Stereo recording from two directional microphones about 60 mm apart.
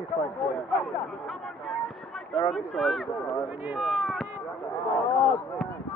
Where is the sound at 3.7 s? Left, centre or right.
Centre.